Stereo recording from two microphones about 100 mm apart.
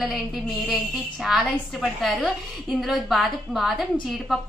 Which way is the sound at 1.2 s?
5° right (ahead or behind).